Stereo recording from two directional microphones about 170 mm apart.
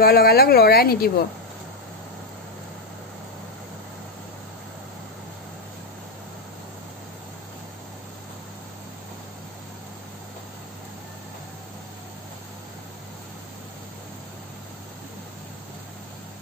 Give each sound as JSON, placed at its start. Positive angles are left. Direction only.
{"t": 0.0, "sound": "speech", "side_deg": 60}